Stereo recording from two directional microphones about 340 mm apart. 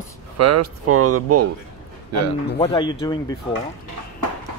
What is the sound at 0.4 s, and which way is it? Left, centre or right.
Speech, right.